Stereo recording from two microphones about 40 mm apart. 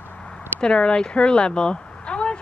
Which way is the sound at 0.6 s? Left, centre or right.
Left.